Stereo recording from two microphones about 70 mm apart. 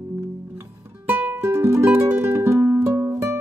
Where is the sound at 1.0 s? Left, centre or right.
Right.